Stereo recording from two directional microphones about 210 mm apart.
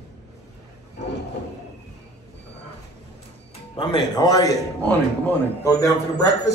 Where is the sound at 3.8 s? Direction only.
20° left (ahead or behind).